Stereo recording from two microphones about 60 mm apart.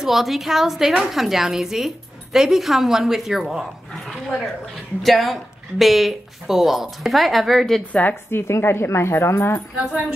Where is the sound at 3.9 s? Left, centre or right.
Centre.